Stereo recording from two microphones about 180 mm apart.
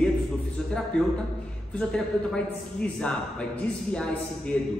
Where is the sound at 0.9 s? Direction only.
5° left (ahead or behind).